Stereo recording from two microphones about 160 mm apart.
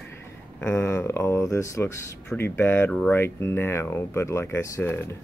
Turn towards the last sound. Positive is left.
turn(degrees=15)  # may be behind; listen again after turning